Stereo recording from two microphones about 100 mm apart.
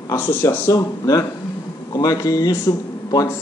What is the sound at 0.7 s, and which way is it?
A man's voice, 35° left (ahead or behind).